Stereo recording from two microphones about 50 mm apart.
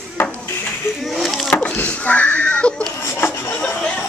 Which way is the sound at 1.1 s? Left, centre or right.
Centre.